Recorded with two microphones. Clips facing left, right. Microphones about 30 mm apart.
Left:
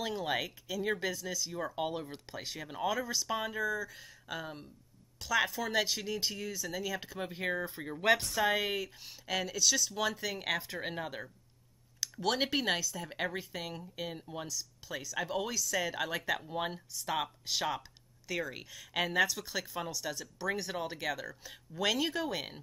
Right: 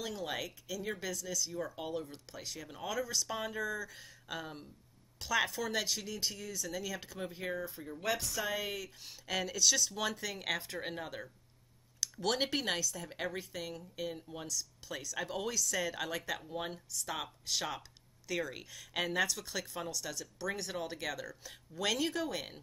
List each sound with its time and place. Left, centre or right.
0.0 s speech: centre
8.6 s speech: centre